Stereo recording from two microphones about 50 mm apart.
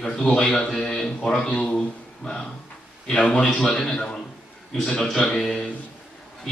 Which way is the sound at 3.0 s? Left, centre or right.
Centre.